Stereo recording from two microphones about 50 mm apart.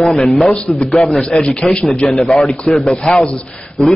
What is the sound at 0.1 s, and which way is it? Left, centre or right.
A man's voice, centre.